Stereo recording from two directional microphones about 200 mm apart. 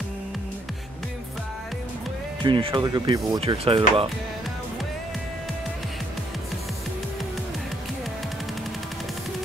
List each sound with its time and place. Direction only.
2.4 s speech: 25° right (ahead or behind)